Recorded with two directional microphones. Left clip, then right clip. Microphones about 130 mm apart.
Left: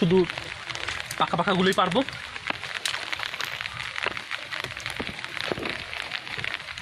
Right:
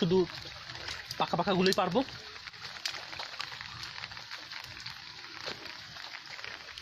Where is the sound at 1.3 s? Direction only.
55° right (ahead or behind).